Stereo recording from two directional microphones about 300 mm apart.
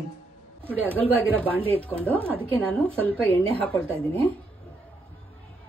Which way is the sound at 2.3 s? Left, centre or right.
Centre.